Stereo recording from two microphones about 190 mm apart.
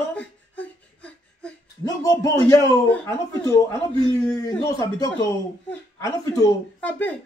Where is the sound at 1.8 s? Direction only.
20° left (ahead or behind).